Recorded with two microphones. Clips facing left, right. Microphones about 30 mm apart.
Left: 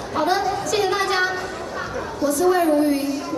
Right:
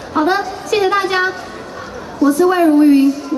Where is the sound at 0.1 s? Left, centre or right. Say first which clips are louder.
Right 5 dB; right.